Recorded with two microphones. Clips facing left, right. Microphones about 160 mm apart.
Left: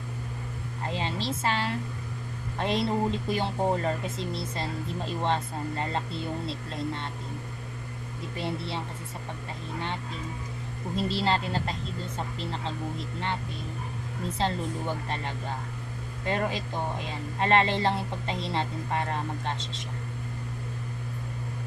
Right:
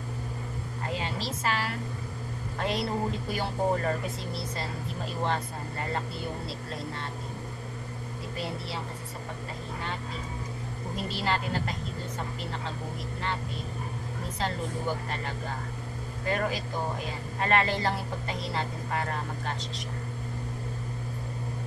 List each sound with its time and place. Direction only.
0.9 s a woman's voice: 25° left (ahead or behind)
5.2 s speech: 25° left (ahead or behind)
8.4 s speech: 25° left (ahead or behind)
11.1 s speech: 30° left (ahead or behind)
16.3 s speech: 25° left (ahead or behind)